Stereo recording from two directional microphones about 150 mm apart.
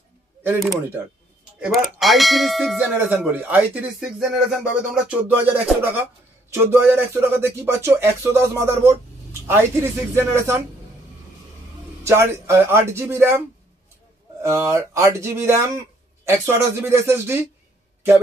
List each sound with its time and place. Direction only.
1.6 s speech: centre (ahead or behind); by 10.6 s 15° right (ahead or behind)
12.0 s speech: 20° right (ahead or behind)
14.4 s speech: 20° right (ahead or behind)